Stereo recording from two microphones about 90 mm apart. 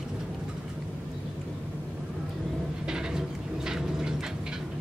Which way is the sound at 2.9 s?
10° right (ahead or behind).